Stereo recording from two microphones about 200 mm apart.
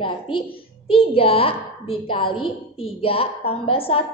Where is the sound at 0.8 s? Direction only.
30° left (ahead or behind).